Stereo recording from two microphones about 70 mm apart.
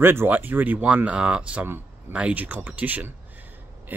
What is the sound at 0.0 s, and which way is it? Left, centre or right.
Speech, right.